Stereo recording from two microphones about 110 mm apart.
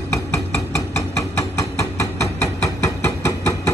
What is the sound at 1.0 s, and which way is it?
Hammer, 25° left (ahead or behind).